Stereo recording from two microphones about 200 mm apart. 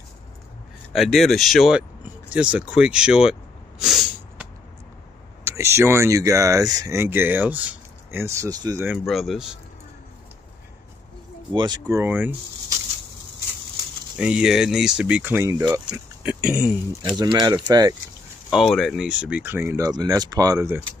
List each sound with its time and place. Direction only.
0.9 s speech: centre (ahead or behind)
3.8 s snort: centre (ahead or behind)
5.4 s speech: 10° right (ahead or behind)
11.5 s speech: 20° right (ahead or behind)
12.0 s speech: 10° right (ahead or behind)
14.1 s speech: 5° right (ahead or behind)
17.1 s speech: 20° right (ahead or behind)
18.5 s speech: centre (ahead or behind)